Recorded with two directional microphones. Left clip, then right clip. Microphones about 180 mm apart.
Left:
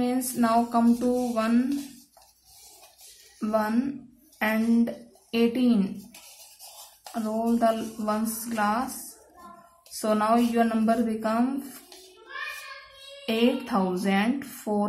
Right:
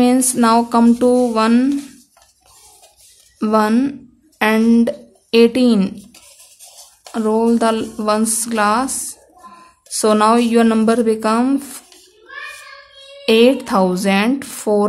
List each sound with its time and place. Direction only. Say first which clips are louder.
0.0 s speech: right 12 dB; 60° right (ahead or behind)
3.3 s speech: right 11 dB; 60° right (ahead or behind)
7.2 s speech: right 11 dB; 55° right (ahead or behind)
9.9 s speech: right 11 dB; 55° right (ahead or behind)
13.2 s speech: right 13 dB; 55° right (ahead or behind)